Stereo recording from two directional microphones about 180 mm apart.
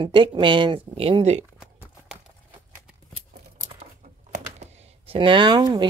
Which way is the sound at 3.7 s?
40° right (ahead or behind).